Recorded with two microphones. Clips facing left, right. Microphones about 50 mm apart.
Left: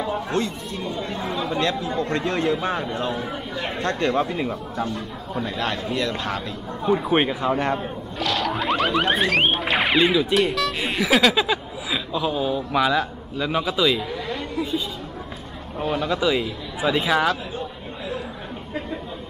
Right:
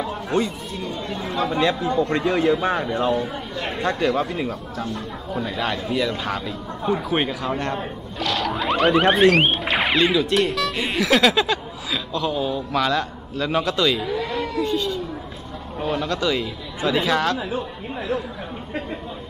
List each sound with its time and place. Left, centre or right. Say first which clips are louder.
0.3 s speech: right 4 dB; centre
1.0 s speech: right 5 dB; centre
2.0 s a man's voice: right 3 dB; centre
3.2 s speech: right 2 dB; centre
4.9 s speech: right 1 dB; centre
7.0 s speech: left 2 dB; centre
15.8 s speech: left 1 dB; centre